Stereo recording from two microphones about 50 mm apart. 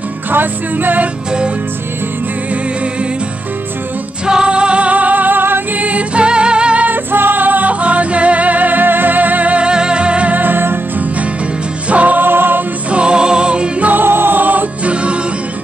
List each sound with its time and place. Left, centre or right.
0.3 s music: right
4.3 s music: centre; by 5.6 s right
5.8 s music: right
6.9 s music: right
10.3 s music: right
11.9 s music: right
12.9 s music: centre
13.8 s music: right